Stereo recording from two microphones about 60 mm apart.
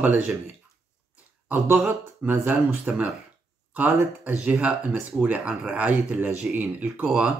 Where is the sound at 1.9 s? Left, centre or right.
Right.